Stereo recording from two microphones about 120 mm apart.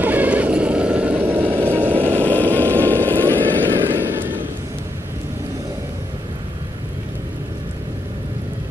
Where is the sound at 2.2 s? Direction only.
15° left (ahead or behind).